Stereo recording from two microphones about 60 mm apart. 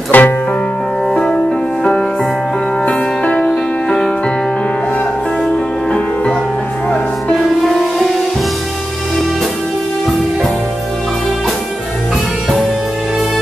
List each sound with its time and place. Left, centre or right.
0.1 s music: left
1.1 s music: centre
3.3 s music: centre
5.4 s music: centre